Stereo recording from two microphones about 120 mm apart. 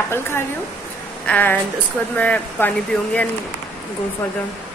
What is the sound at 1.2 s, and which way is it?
Speech, 15° left (ahead or behind).